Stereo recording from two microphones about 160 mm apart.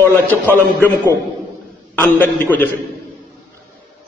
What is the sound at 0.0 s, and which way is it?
Speech, 10° left (ahead or behind).